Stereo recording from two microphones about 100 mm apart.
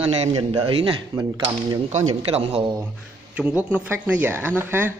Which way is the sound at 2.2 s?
75° right (ahead or behind).